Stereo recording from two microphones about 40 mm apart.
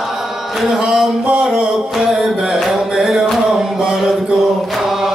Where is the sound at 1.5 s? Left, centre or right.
Centre.